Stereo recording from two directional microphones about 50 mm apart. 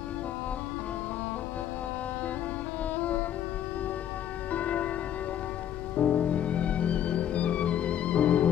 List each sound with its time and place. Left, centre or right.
3.0 s music: left
4.5 s music: left
5.9 s music: left